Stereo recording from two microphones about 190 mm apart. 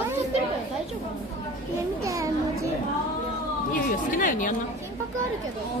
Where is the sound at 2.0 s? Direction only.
15° right (ahead or behind).